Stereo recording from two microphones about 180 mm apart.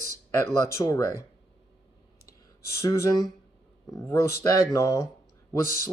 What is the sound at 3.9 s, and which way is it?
Speech, 15° left (ahead or behind).